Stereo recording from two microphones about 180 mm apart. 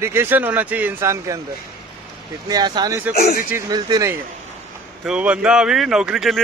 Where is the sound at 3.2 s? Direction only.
60° left (ahead or behind).